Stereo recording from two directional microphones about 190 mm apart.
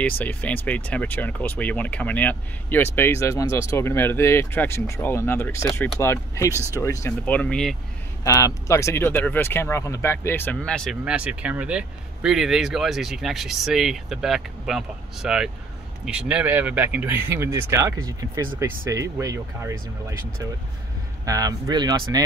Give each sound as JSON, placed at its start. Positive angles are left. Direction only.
{"t": 0.2, "sound": "speech", "side_deg": 10}
{"t": 6.5, "sound": "speech", "side_deg": -10}
{"t": 6.8, "sound": "speech", "side_deg": 15}
{"t": 8.2, "sound": "speech", "side_deg": 15}
{"t": 21.3, "sound": "speech", "side_deg": -20}